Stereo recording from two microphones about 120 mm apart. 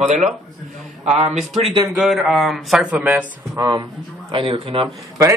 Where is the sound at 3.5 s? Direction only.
30° right (ahead or behind).